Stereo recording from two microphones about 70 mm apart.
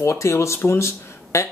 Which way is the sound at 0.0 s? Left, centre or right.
Left.